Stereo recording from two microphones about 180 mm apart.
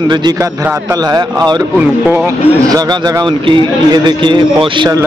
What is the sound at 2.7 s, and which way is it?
A man's voice, 20° right (ahead or behind).